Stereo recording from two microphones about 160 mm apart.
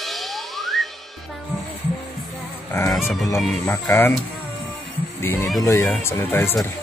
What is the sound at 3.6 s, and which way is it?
Speech, 15° left (ahead or behind).